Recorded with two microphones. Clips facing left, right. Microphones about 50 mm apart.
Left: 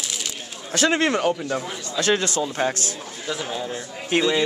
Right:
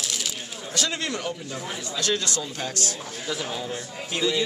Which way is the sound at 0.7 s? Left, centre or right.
Left.